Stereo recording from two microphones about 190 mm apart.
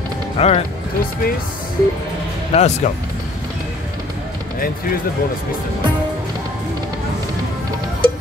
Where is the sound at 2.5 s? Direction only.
35° left (ahead or behind).